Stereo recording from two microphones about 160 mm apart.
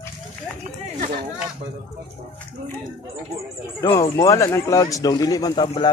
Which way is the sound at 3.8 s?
25° left (ahead or behind).